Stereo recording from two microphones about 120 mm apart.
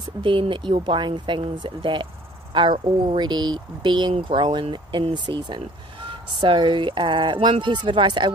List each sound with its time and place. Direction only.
0.2 s speech: 45° right (ahead or behind)